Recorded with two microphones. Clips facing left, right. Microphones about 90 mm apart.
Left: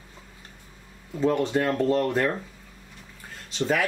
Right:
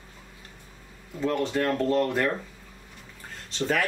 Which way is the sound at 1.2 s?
15° left (ahead or behind).